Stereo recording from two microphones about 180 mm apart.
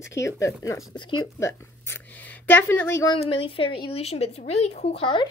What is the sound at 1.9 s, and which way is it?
Speech, 10° left (ahead or behind).